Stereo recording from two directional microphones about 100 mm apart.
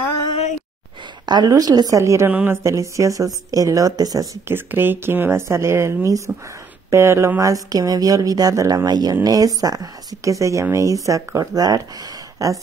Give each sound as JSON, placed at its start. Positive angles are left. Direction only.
{"t": 1.2, "sound": "speech", "side_deg": -45}
{"t": 4.5, "sound": "speech", "side_deg": -20}